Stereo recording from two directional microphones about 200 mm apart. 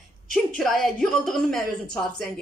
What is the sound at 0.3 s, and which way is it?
A woman's voice, centre (ahead or behind).